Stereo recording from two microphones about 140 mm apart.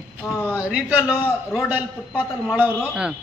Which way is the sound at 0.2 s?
20° left (ahead or behind).